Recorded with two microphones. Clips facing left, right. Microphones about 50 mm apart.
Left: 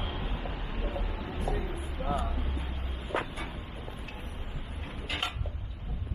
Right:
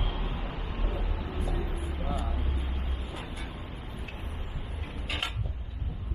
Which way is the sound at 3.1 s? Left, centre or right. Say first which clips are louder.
Left 12 dB; left.